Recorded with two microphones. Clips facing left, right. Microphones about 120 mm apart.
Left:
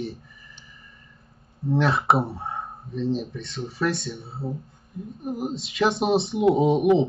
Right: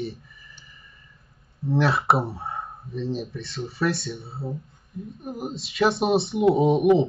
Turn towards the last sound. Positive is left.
turn(degrees=0)  # may be behind; listen again after turning